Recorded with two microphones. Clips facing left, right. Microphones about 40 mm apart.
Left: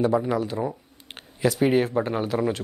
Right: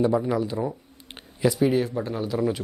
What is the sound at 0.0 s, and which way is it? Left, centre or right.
Speech, centre.